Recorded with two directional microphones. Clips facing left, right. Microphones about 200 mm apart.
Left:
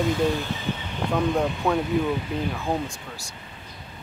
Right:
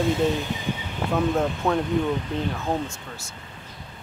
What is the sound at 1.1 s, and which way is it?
Speech, centre (ahead or behind).